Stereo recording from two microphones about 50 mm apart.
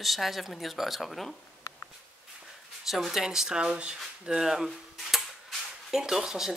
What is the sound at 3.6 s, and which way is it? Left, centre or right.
Speech, right.